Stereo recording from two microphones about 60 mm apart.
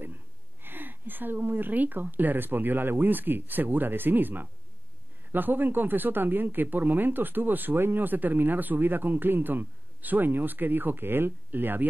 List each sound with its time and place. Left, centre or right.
0.6 s speech: right